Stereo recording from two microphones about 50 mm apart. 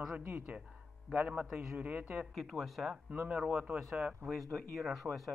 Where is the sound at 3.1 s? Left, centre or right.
Right.